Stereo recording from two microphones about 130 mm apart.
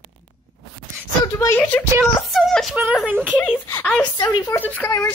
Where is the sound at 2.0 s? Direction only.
Centre (ahead or behind).